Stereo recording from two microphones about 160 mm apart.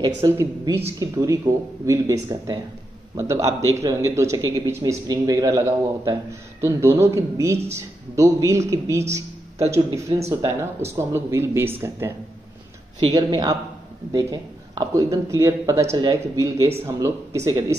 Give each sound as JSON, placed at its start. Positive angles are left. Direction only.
{"t": 0.0, "sound": "speech", "side_deg": -20}
{"t": 13.0, "sound": "speech", "side_deg": -25}